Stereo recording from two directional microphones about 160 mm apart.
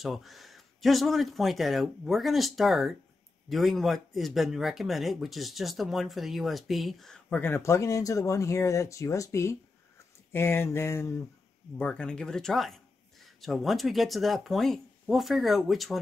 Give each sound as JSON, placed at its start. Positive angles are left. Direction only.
{"t": 0.0, "sound": "speech", "side_deg": 0}
{"t": 10.3, "sound": "a sound", "side_deg": 15}
{"t": 11.8, "sound": "speech", "side_deg": 5}